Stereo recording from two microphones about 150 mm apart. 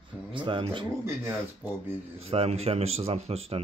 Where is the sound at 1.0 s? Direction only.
15° right (ahead or behind).